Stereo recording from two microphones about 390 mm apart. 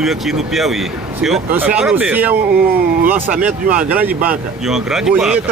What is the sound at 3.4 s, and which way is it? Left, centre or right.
Speech, centre.